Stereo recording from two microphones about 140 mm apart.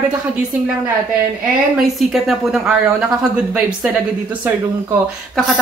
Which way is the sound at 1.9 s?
Centre (ahead or behind).